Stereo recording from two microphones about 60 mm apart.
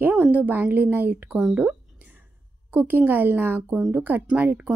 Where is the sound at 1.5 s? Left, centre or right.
Right.